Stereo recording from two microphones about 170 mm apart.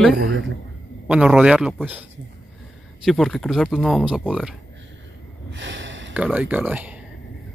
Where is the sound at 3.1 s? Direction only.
Centre (ahead or behind).